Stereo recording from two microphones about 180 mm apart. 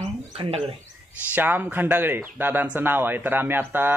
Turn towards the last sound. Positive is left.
turn(degrees=-10)  # may be behind; listen again after turning